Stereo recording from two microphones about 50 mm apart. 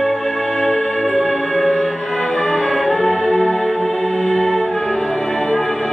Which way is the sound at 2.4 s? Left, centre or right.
Centre.